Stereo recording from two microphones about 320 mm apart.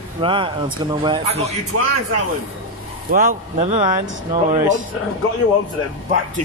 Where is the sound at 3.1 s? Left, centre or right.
Right.